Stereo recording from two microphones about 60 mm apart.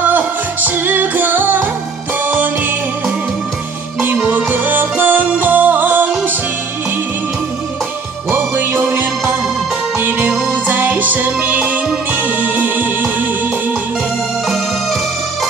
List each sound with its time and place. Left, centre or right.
0.0 s music: right
4.3 s music: right
8.3 s music: right